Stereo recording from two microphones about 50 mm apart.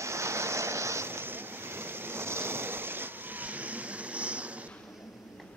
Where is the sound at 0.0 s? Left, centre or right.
Right.